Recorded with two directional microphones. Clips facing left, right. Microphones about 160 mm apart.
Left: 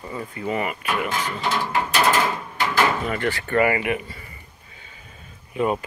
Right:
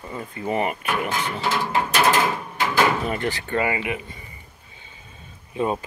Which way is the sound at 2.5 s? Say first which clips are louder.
Right 1 dB; 15° right (ahead or behind).